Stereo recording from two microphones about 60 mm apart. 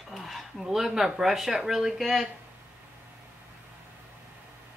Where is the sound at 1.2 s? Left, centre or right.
Centre.